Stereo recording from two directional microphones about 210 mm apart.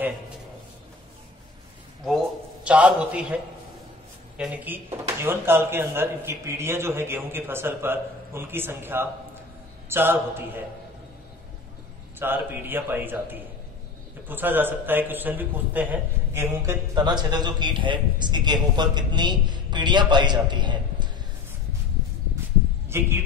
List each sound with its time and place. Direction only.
2.0 s a sound: 5° right (ahead or behind)
4.4 s a man's voice: 5° right (ahead or behind)
12.2 s a man's voice: 10° right (ahead or behind)
22.8 s a man's voice: 10° right (ahead or behind)